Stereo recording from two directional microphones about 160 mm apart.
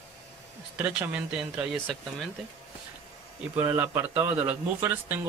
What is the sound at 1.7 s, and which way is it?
Speech, 5° left (ahead or behind).